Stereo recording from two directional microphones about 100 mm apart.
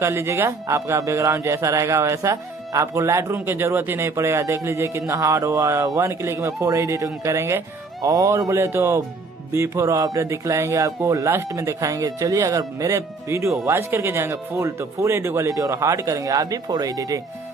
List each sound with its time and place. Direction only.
0.0 s speech: 25° right (ahead or behind)